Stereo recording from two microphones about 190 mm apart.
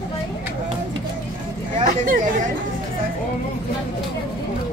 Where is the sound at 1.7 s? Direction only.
45° right (ahead or behind).